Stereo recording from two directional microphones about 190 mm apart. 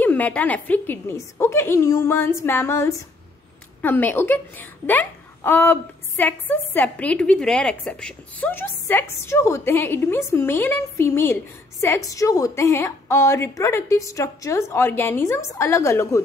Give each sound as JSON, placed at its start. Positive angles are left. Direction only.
{"t": 0.0, "sound": "speech", "side_deg": 10}